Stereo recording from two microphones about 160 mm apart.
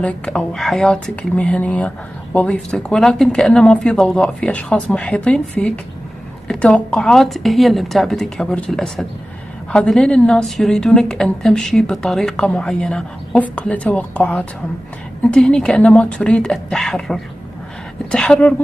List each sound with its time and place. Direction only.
0.0 s a woman's voice: 5° left (ahead or behind)